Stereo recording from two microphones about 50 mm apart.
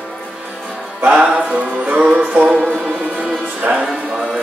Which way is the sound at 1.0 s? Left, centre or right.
Right.